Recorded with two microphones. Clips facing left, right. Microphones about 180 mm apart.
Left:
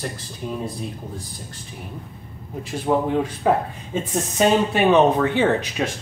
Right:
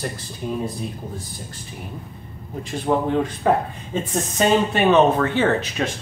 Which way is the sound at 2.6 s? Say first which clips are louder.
Even; 10° left (ahead or behind).